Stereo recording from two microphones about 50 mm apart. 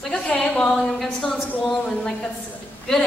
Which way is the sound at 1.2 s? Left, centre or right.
Centre.